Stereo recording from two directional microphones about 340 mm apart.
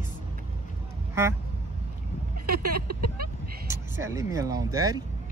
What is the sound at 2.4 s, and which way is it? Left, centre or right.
Speech, right.